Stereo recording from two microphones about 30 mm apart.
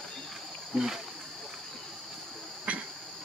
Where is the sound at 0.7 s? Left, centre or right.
Right.